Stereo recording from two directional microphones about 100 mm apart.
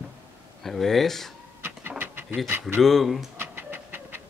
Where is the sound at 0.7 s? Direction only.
Centre (ahead or behind).